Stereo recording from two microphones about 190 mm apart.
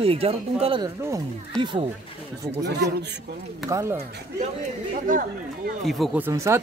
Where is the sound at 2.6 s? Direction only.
65° right (ahead or behind).